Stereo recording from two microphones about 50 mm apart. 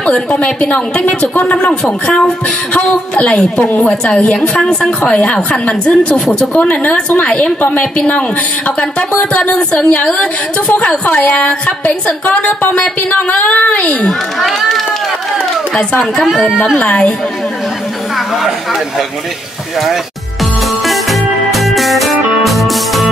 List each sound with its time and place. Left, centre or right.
0.0 s a woman's voice: left
9.3 s a woman's voice: left
16.3 s speech: centre
16.7 s a woman's voice: left
20.8 s music: centre